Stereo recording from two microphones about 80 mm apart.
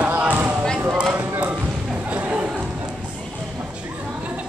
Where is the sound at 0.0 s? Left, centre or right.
Centre.